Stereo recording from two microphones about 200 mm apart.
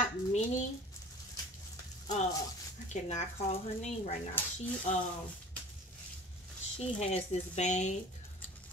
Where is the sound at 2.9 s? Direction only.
35° left (ahead or behind).